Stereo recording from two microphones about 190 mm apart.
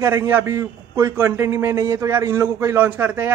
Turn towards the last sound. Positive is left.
turn(degrees=-10)  # may be behind; listen again after turning